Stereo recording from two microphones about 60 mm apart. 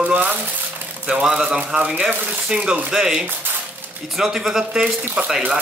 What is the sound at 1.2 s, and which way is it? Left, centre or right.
Speech, centre.